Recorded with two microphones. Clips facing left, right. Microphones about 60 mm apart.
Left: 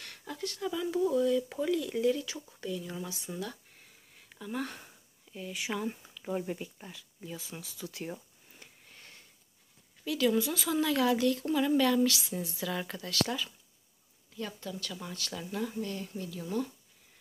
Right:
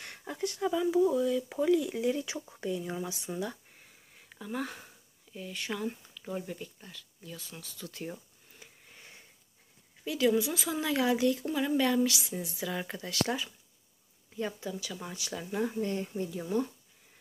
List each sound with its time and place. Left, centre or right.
0.0 s speech: right
2.1 s speech: right
3.7 s a sound: centre
10.0 s speech: right
11.4 s speech: centre
15.8 s speech: right